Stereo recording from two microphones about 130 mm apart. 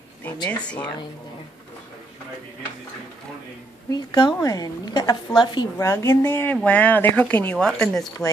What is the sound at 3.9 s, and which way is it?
A woman's voice, 35° left (ahead or behind).